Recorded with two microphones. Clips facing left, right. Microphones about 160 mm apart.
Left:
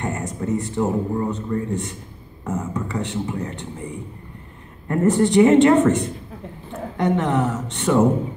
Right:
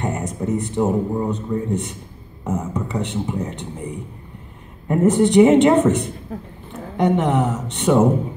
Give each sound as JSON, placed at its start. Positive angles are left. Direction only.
{"t": 0.0, "sound": "a man's voice", "side_deg": -15}
{"t": 4.8, "sound": "a man's voice", "side_deg": -15}